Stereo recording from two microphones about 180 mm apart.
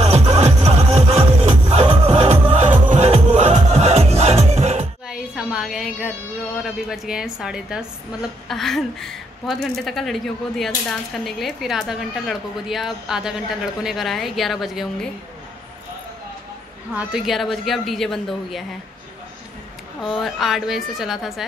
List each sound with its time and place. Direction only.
0.0 s music: 35° right (ahead or behind)
5.0 s music: 5° right (ahead or behind)
6.6 s a woman's voice: 5° right (ahead or behind)
16.9 s a woman's voice: centre (ahead or behind)
20.0 s a woman's voice: centre (ahead or behind)